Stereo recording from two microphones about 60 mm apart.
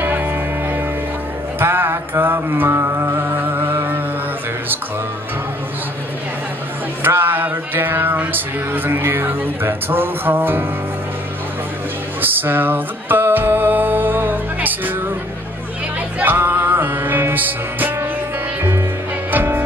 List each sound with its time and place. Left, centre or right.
0.0 s music: right
1.6 s mantra: right
7.0 s music: right
12.2 s music: right
16.3 s music: right
19.3 s music: right